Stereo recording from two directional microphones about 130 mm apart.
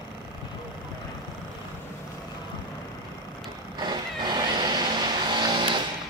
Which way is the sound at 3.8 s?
35° right (ahead or behind).